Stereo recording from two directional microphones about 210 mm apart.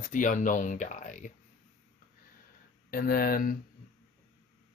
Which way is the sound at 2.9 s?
45° left (ahead or behind).